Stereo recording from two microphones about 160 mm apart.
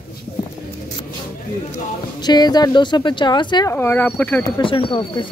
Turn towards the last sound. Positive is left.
turn(degrees=30)  # may be behind; listen again after turning